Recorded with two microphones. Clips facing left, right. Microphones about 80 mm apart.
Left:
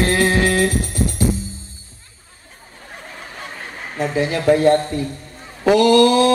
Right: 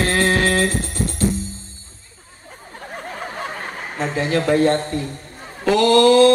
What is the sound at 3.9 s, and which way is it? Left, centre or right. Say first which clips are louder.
Music: left 1 dB; centre.